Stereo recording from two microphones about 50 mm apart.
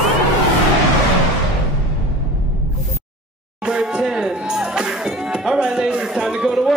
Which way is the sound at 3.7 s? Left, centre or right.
Centre.